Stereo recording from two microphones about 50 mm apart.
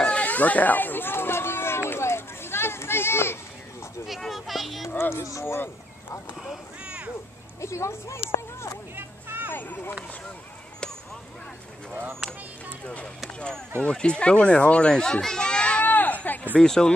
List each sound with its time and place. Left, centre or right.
0.0 s a sound: left
4.2 s a child's voice: centre
5.1 s speech: left
5.4 s speech: left
7.6 s speech: left
8.9 s a sound: right
9.5 s speech: left
12.8 s speech: left
15.9 s a sound: left
16.6 s speech: centre